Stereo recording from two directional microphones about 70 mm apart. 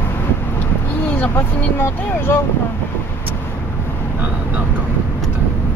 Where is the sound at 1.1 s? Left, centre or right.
Left.